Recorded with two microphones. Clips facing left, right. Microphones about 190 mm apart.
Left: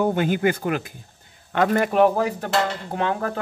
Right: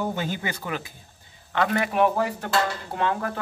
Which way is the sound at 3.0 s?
40° left (ahead or behind).